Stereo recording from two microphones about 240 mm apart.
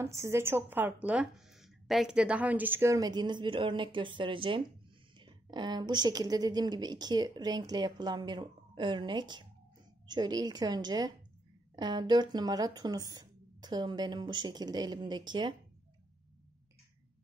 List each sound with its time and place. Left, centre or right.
0.0 s speech: centre